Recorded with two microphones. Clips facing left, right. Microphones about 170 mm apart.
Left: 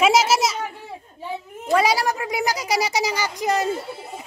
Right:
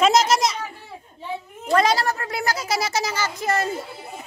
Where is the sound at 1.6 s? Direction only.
10° left (ahead or behind).